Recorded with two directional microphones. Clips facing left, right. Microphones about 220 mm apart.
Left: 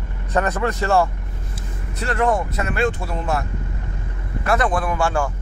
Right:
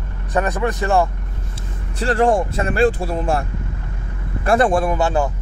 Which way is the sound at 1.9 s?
30° right (ahead or behind).